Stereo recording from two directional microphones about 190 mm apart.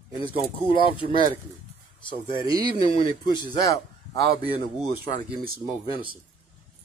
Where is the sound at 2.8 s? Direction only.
25° left (ahead or behind).